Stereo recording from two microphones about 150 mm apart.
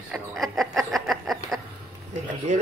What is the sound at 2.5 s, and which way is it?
Speech, 55° right (ahead or behind).